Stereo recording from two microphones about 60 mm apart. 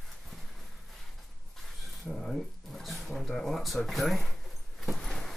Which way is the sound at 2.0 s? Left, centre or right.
Centre.